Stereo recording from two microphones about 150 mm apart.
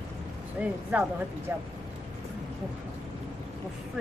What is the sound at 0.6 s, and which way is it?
Speech, 10° right (ahead or behind).